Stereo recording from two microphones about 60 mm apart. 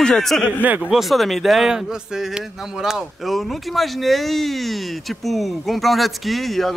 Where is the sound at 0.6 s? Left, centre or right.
Right.